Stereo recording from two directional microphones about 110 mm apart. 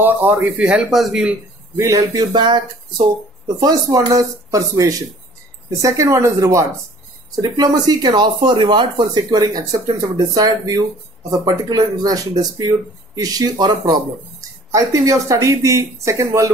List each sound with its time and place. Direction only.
0.0 s speech: 15° right (ahead or behind)
1.8 s speech: 25° right (ahead or behind)
2.3 s speech: 45° right (ahead or behind)
3.6 s speech: 35° right (ahead or behind)